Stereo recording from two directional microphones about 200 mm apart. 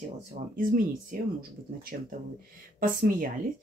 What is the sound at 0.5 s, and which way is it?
Speech, 45° right (ahead or behind).